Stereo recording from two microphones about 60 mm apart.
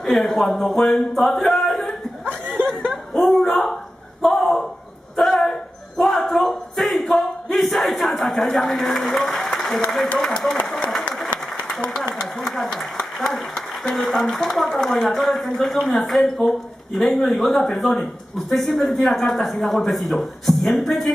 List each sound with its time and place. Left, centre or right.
0.0 s speech: centre
0.9 s music: centre
2.4 s chuckle: centre
2.9 s speech: centre
4.2 s a sound: centre
10.1 s speech: centre
11.6 s speech: centre